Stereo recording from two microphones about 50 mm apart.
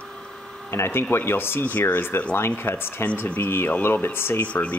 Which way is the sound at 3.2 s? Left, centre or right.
Left.